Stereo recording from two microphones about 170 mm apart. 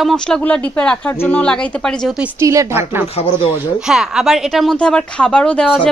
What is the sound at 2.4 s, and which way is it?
A woman's voice, 20° right (ahead or behind).